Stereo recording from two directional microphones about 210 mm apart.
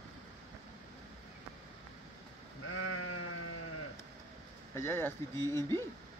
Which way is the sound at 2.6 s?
75° left (ahead or behind).